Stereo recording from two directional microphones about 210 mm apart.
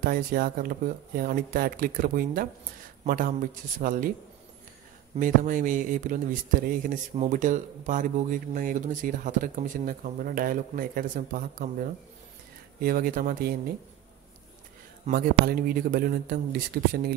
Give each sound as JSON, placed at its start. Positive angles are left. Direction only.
{"t": 0.0, "sound": "speech", "side_deg": -45}
{"t": 5.1, "sound": "speech", "side_deg": -40}
{"t": 12.8, "sound": "speech", "side_deg": -45}
{"t": 15.0, "sound": "speech", "side_deg": -45}